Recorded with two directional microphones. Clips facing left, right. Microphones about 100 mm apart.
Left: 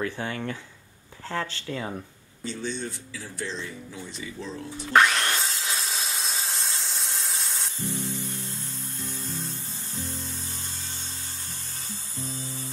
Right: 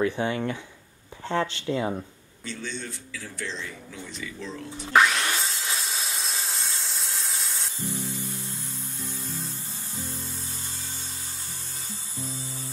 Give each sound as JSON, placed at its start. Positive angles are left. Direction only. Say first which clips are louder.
{"t": 0.0, "sound": "speech", "louder": "right 5 dB", "side_deg": -20}
{"t": 2.4, "sound": "a man's voice", "louder": "left 3 dB", "side_deg": 30}
{"t": 4.9, "sound": "wood", "louder": "even", "side_deg": 0}
{"t": 7.8, "sound": "spray", "louder": "left 1 dB", "side_deg": -15}